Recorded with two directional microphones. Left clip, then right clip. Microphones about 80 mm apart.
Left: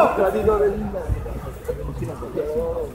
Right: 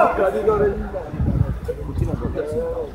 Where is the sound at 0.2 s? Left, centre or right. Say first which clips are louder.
Even; right.